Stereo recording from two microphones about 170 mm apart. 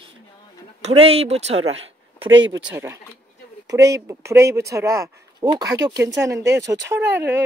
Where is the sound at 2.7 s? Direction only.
15° right (ahead or behind).